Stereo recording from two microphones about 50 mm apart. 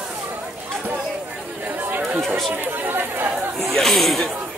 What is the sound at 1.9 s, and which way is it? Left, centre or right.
Chatter, right.